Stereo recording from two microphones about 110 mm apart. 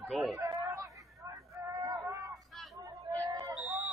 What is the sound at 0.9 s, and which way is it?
Hubbub, 30° right (ahead or behind).